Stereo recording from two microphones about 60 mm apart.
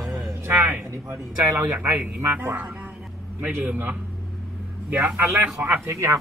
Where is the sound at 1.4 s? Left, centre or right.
Right.